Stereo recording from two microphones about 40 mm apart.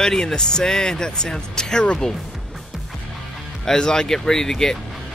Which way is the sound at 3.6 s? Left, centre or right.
Centre.